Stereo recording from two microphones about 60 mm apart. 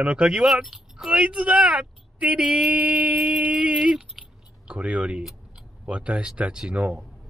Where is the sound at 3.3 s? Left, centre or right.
Centre.